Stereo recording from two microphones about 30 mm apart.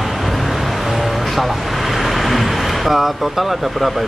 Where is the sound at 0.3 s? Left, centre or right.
Centre.